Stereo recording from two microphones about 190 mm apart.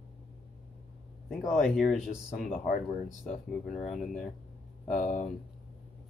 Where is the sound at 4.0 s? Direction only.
5° left (ahead or behind).